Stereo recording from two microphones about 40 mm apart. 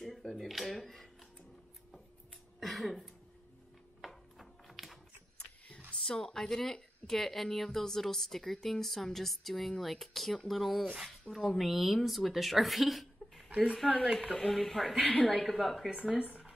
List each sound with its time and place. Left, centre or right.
0.4 s speech: centre
2.6 s a sound: centre
5.9 s speech: centre
13.5 s speech: right
14.4 s speech: centre
15.0 s a woman's voice: left
15.2 s a woman's voice: centre
15.5 s speech: centre
16.2 s speech: right